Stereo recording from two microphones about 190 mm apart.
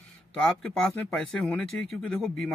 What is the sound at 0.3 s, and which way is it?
Speech, 5° left (ahead or behind).